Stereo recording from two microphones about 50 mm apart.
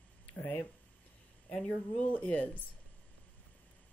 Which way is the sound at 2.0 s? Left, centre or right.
Left.